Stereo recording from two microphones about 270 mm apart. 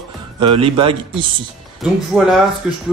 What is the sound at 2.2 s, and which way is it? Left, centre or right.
Speech, centre.